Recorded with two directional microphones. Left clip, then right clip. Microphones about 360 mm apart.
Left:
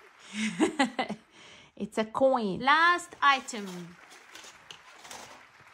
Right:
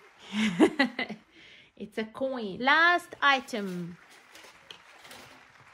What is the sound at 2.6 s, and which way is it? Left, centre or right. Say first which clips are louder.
A woman's voice: right 2 dB; centre.